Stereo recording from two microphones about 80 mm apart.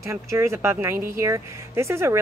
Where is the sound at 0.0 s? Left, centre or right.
Right.